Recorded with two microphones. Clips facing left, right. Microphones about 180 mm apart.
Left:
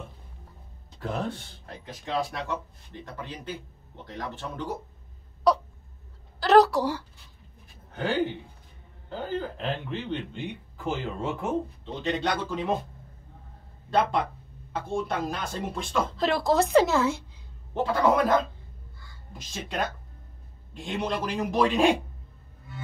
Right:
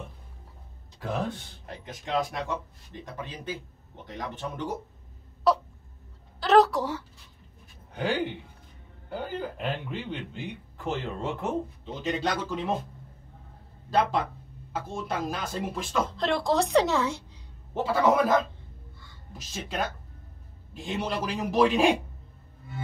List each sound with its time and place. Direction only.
1.9 s speech: 20° right (ahead or behind)
5.5 s hiccup: 5° right (ahead or behind)
6.4 s a sound: centre (ahead or behind)
7.9 s a man's voice: 15° right (ahead or behind)
13.8 s a man's voice: centre (ahead or behind)
17.8 s a man's voice: 5° right (ahead or behind)
18.9 s a sound: centre (ahead or behind)
20.7 s a man's voice: 5° right (ahead or behind)